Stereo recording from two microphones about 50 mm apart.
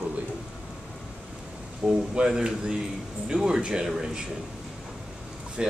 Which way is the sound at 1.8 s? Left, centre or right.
Right.